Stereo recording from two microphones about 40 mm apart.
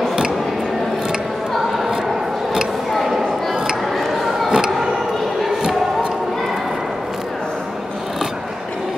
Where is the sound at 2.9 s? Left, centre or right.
Centre.